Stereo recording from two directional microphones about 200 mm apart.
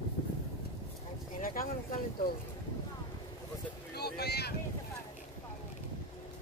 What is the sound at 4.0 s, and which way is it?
Boat, 55° left (ahead or behind).